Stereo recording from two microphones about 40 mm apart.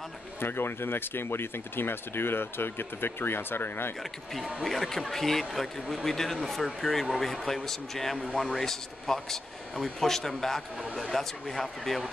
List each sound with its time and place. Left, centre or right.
0.4 s speech: left
4.6 s speech: centre